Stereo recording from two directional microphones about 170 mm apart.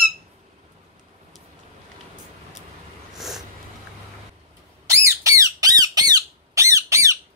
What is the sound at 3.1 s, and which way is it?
Snort, centre (ahead or behind).